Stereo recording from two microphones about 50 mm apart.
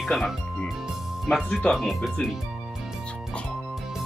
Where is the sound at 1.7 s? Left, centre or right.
Centre.